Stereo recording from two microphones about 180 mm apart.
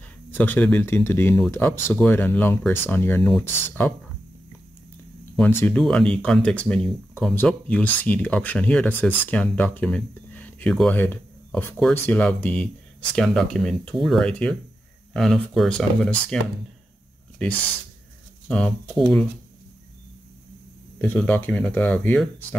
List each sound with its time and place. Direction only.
0.3 s speech: 10° left (ahead or behind)
5.3 s speech: 10° left (ahead or behind)
18.5 s speech: 5° left (ahead or behind)
21.0 s speech: 10° left (ahead or behind)